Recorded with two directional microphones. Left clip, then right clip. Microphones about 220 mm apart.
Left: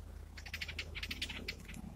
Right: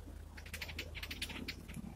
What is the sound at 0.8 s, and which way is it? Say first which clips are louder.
Typing: left 2 dB; 15° right (ahead or behind).